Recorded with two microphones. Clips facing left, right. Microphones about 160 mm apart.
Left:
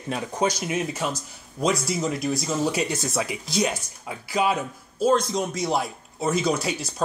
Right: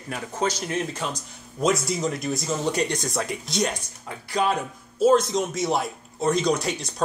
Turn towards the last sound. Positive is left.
turn(degrees=5)  # may be behind; listen again after turning